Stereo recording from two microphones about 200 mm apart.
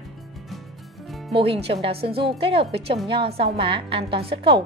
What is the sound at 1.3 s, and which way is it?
A woman's voice, 30° right (ahead or behind).